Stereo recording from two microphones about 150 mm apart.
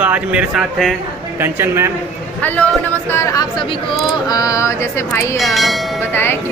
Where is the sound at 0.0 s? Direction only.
10° right (ahead or behind).